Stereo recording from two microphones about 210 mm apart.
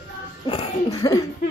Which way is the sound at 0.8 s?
15° left (ahead or behind).